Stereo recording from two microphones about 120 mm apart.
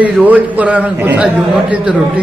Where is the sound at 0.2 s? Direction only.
15° right (ahead or behind).